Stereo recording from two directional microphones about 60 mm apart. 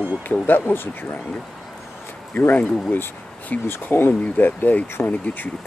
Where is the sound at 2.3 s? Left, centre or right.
Left.